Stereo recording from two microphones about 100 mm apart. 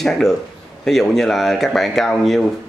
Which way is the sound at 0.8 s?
5° left (ahead or behind).